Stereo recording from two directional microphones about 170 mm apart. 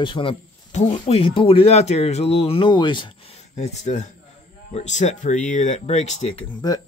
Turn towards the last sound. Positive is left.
turn(degrees=25)  # may be behind; listen again after turning